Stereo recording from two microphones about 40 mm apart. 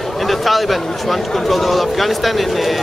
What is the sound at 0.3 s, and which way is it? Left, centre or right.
Speech, centre.